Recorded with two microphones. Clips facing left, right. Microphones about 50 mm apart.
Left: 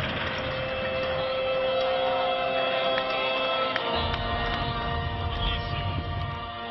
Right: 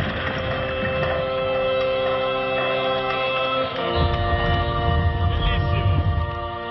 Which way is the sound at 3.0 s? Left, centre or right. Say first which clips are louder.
Right 4 dB; right.